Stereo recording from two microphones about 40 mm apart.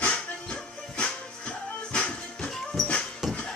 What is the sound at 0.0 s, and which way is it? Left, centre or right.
Music, left.